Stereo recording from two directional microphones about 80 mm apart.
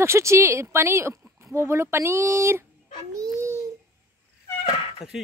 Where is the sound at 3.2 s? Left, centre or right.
Right.